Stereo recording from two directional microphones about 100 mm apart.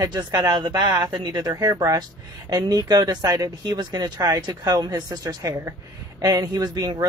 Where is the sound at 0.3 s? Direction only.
40° right (ahead or behind).